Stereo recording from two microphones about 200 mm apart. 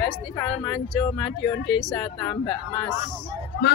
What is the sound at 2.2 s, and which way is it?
Speech, 20° left (ahead or behind).